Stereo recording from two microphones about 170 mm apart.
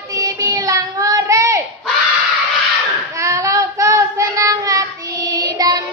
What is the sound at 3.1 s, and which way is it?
Child singing, 20° right (ahead or behind).